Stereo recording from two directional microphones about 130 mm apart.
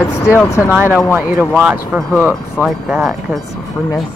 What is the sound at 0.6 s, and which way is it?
Speech, 15° right (ahead or behind).